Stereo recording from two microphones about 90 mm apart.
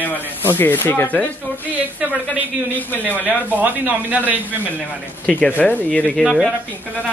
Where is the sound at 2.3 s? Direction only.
20° right (ahead or behind).